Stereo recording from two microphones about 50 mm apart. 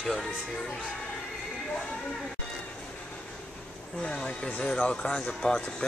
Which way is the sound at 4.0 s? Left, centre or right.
Centre.